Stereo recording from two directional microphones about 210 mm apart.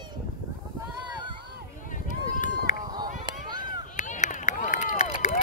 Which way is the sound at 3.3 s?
20° right (ahead or behind).